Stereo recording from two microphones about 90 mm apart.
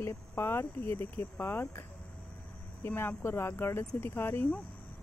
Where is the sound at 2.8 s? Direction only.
25° left (ahead or behind).